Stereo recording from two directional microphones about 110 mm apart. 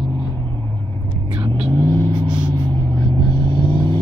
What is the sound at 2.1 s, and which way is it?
Vehicle, 45° right (ahead or behind).